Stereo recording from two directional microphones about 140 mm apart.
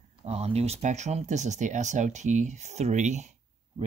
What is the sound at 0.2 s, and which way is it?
Speech, 50° right (ahead or behind).